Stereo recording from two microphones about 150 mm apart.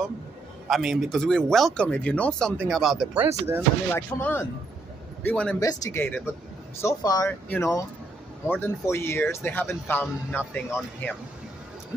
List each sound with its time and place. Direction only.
0.7 s speech: centre (ahead or behind)
3.2 s speech: 15° right (ahead or behind)
3.9 s speech: 15° left (ahead or behind)
5.6 s speech: 20° left (ahead or behind)